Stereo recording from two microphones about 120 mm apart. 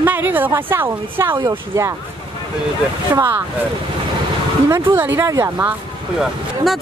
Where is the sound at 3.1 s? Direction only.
35° right (ahead or behind).